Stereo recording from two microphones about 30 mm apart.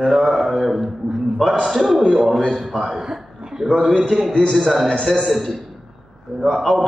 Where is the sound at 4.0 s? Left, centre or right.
Centre.